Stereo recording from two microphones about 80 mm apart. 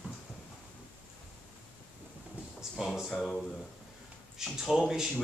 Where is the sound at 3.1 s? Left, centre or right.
Centre.